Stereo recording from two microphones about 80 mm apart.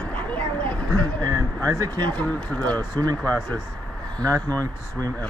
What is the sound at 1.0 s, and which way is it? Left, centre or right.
Speech, right.